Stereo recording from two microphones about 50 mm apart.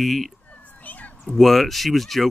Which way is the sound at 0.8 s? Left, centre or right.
Left.